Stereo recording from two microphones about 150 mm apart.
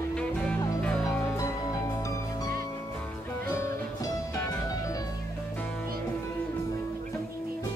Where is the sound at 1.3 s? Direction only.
20° left (ahead or behind).